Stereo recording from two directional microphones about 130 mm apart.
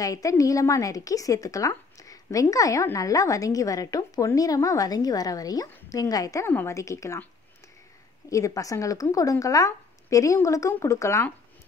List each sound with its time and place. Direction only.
0.0 s a woman's voice: 25° left (ahead or behind)
8.3 s a woman's voice: 25° left (ahead or behind)